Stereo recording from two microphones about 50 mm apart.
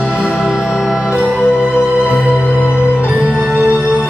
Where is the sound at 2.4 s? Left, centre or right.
Left.